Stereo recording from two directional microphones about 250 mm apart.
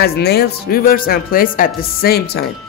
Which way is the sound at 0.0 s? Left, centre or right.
Left.